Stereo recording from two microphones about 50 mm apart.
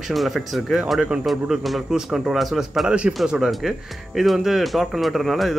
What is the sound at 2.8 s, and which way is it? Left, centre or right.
Speech, right.